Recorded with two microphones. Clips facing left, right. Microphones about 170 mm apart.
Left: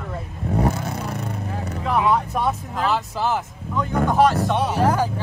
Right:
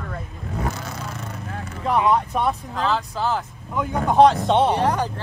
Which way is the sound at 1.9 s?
Centre (ahead or behind).